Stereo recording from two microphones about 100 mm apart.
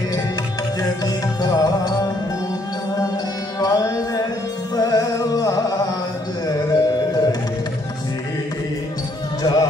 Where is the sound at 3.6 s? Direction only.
40° left (ahead or behind).